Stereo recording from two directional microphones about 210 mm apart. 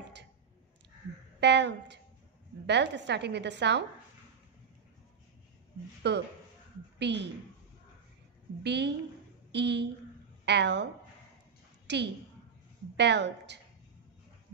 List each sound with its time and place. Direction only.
1.4 s a woman's voice: 55° right (ahead or behind)
6.0 s a woman's voice: 55° right (ahead or behind)
8.6 s a woman's voice: 55° right (ahead or behind)
11.9 s a woman's voice: 55° right (ahead or behind)